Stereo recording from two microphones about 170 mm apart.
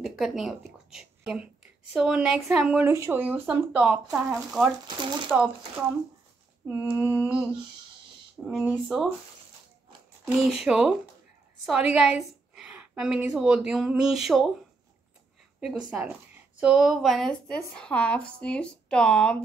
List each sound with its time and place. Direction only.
0.0 s a woman's voice: centre (ahead or behind)
6.9 s speech: 10° right (ahead or behind)
8.5 s a woman's voice: centre (ahead or behind)
10.2 s a woman's voice: 5° right (ahead or behind)
15.6 s a woman's voice: 5° right (ahead or behind)